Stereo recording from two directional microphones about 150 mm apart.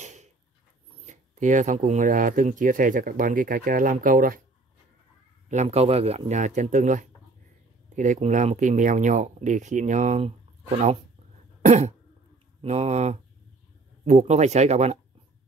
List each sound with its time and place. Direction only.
0.0 s a sound: 50° right (ahead or behind)
1.0 s speech: 55° right (ahead or behind)
5.5 s speech: 50° right (ahead or behind)
11.6 s cough: 50° right (ahead or behind)
12.6 s speech: 45° right (ahead or behind)